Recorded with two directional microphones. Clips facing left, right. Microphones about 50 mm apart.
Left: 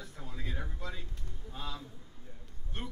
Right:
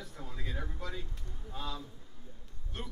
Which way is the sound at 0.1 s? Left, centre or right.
Centre.